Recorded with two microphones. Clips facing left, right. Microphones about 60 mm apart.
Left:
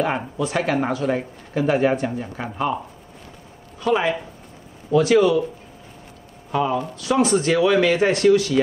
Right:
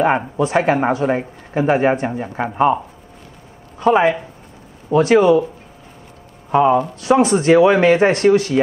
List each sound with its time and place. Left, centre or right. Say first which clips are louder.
0.4 s speech: right 4 dB; right
3.8 s speech: right 6 dB; right
6.5 s speech: right 8 dB; right